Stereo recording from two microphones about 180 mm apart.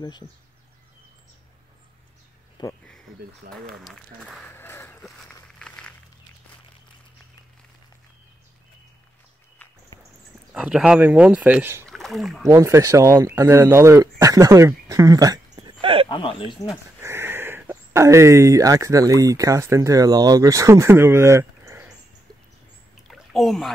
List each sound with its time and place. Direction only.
2.6 s speech: 25° left (ahead or behind)
3.4 s speech: 50° right (ahead or behind)
3.8 s speech: centre (ahead or behind)
4.5 s a sound: 10° left (ahead or behind)
5.0 s a sound: centre (ahead or behind)
10.5 s speech: 5° right (ahead or behind)
12.4 s speech: 15° right (ahead or behind)
16.1 s speech: 30° left (ahead or behind)
17.0 s speech: 15° right (ahead or behind)
23.0 s a sound: centre (ahead or behind)